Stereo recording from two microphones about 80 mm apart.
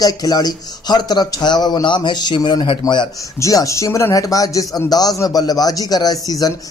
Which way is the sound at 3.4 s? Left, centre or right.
Left.